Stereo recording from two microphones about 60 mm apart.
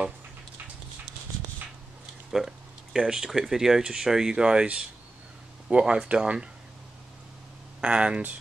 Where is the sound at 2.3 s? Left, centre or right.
Centre.